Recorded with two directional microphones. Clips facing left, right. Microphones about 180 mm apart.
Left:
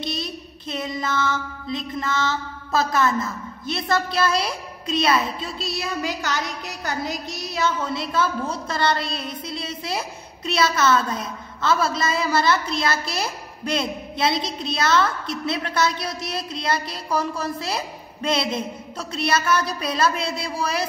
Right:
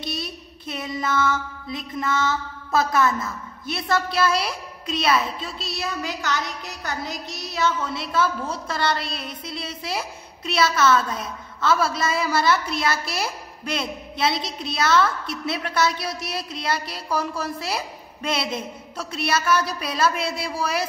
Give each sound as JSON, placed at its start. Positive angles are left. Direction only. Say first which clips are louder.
{"t": 0.1, "sound": "child singing", "louder": "left 2 dB", "side_deg": -10}
{"t": 1.7, "sound": "a woman's voice", "louder": "even", "side_deg": -10}